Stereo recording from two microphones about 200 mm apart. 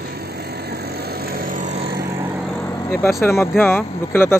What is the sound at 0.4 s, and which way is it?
Vehicle, 50° right (ahead or behind).